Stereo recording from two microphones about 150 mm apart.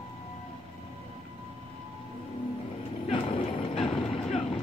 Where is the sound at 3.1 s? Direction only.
35° left (ahead or behind).